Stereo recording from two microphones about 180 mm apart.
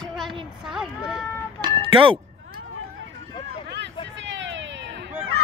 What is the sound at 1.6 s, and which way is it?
Cat, 30° right (ahead or behind).